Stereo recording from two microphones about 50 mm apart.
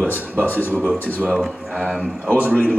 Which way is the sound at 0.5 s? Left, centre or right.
Left.